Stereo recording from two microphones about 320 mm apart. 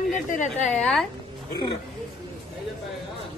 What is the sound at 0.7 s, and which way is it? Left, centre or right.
Speech, centre.